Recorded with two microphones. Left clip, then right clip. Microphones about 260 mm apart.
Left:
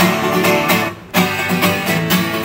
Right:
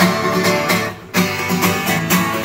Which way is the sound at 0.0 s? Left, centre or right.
Left.